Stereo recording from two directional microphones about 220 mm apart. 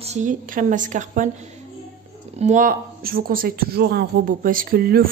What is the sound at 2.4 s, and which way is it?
Speech, 35° right (ahead or behind).